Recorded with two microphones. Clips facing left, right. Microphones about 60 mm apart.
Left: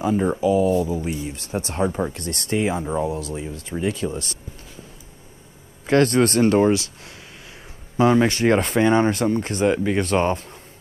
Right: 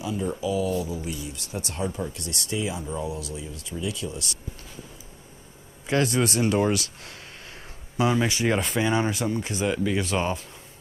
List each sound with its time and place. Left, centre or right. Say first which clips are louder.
0.0 s speech: left 8 dB; left
5.9 s speech: left 7 dB; left
6.6 s speech: left 6 dB; left